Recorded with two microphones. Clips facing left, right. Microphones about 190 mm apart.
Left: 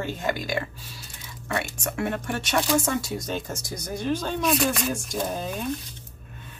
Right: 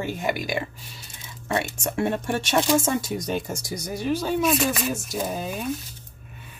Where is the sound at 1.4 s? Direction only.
25° right (ahead or behind); by 5.8 s 5° right (ahead or behind).